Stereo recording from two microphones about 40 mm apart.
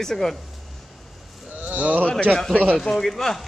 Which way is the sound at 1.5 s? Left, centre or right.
Right.